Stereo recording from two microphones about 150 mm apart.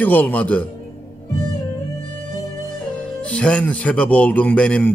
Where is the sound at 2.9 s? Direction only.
5° left (ahead or behind).